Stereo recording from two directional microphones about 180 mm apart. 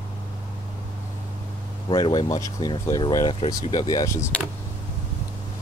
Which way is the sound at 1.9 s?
25° left (ahead or behind).